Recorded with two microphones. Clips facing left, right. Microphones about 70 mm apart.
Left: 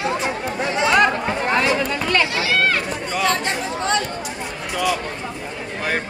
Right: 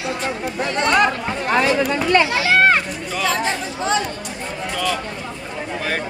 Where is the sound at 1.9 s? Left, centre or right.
Right.